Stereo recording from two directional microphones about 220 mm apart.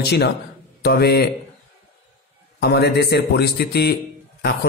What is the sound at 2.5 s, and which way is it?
Speech, 45° left (ahead or behind).